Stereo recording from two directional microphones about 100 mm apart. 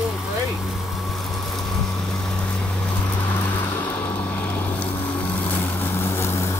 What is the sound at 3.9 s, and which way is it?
Vehicle, 15° left (ahead or behind).